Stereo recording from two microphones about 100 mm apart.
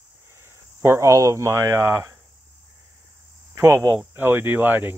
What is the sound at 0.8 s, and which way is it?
Speech, 30° right (ahead or behind).